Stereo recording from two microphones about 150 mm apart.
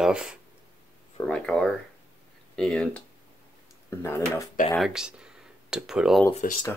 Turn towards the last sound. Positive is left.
turn(degrees=65)  # may be behind; listen again after turning